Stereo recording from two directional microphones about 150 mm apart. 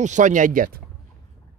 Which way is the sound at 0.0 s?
55° right (ahead or behind).